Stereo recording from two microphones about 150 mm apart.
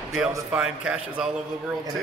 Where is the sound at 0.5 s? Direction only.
5° right (ahead or behind).